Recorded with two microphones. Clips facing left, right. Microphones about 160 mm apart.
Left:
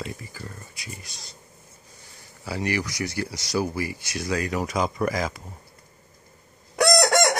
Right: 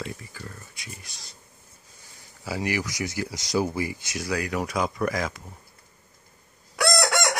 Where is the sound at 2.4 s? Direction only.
10° right (ahead or behind).